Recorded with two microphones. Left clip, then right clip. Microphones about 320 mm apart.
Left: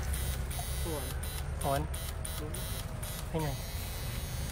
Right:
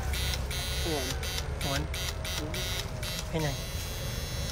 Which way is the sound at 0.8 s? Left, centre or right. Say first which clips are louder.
Right 7 dB; right.